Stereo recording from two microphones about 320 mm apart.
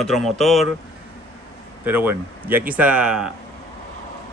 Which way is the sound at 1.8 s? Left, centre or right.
Centre.